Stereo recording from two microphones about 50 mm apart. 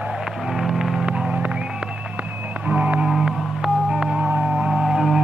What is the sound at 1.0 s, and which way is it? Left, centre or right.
Music, right.